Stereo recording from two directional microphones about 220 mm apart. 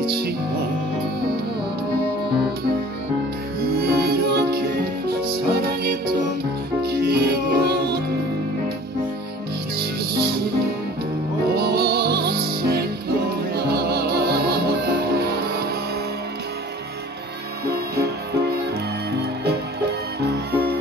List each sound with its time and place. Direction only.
3.8 s music: 45° right (ahead or behind)
9.8 s music: 45° right (ahead or behind)
11.5 s music: 45° right (ahead or behind)
17.6 s music: 45° right (ahead or behind)
20.2 s music: 45° right (ahead or behind)